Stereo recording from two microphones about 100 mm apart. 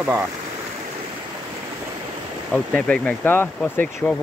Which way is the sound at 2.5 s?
10° left (ahead or behind).